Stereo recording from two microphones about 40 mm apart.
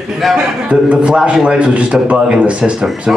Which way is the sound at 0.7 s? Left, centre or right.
Right.